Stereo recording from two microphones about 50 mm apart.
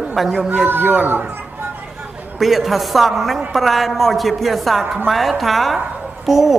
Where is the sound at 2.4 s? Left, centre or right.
Centre.